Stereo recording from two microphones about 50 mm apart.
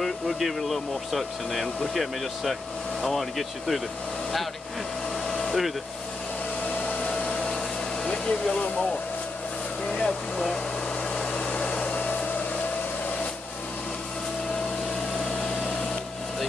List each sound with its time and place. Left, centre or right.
0.0 s speech: centre
3.0 s speech: centre
5.3 s air conditioning: centre
6.6 s hair dryer: left
7.2 s vacuum cleaner: centre
9.8 s speech: centre
11.3 s hair dryer: left
15.1 s a sound: left